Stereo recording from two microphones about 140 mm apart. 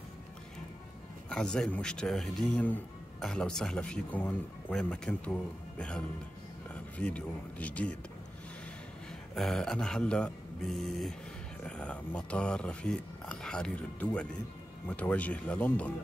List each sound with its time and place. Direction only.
1.3 s speech: 5° left (ahead or behind)
9.3 s speech: 5° left (ahead or behind)